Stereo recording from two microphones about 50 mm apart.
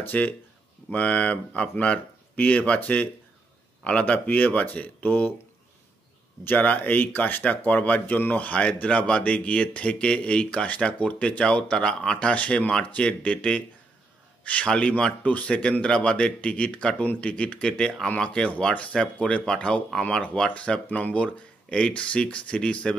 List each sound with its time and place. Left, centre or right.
0.1 s speech: left
4.3 s speech: left
6.4 s a man's voice: left